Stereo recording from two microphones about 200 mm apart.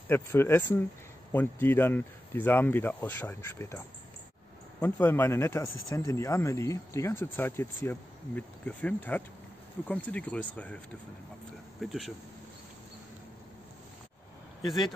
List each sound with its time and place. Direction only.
0.1 s speech: 10° left (ahead or behind)
11.8 s speech: centre (ahead or behind)